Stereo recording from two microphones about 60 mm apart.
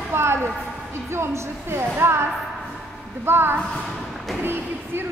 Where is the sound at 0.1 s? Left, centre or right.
Right.